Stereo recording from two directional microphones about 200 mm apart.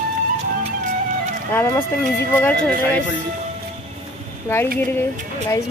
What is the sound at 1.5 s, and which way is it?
Speech, 10° left (ahead or behind).